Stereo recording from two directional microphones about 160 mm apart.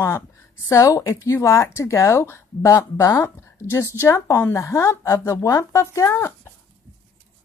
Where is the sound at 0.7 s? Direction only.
20° left (ahead or behind).